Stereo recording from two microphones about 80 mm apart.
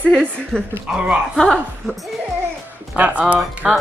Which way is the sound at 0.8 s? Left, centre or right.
Centre.